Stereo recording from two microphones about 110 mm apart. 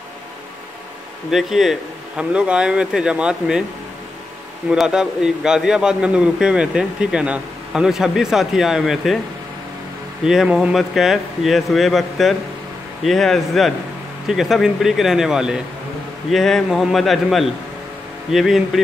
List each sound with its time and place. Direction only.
1.3 s speech: 5° right (ahead or behind)
4.6 s a man's voice: 5° right (ahead or behind)
10.2 s a man's voice: 5° right (ahead or behind)